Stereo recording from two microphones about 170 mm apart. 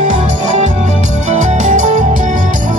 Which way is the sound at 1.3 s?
45° right (ahead or behind).